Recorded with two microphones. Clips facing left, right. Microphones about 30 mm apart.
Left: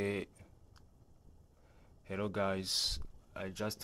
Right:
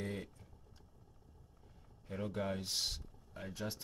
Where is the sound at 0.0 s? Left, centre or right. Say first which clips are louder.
Left 6 dB; left.